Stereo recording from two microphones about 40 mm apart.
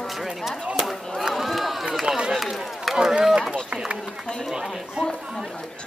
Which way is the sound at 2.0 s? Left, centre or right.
Centre.